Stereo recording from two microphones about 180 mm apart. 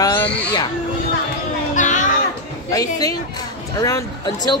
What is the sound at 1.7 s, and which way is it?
Music, 45° left (ahead or behind).